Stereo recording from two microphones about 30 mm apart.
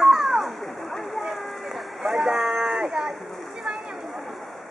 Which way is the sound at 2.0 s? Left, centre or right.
Centre.